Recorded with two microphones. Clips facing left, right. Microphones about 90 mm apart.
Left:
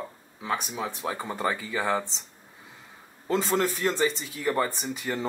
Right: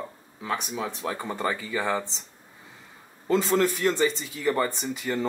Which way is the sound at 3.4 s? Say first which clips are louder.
Right 2 dB; 10° left (ahead or behind).